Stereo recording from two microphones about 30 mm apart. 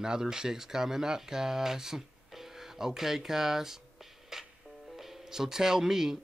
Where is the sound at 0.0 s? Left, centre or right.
Right.